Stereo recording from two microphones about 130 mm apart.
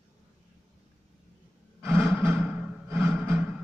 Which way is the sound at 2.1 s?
15° right (ahead or behind).